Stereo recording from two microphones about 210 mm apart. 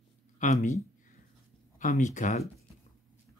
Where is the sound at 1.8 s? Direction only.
35° left (ahead or behind).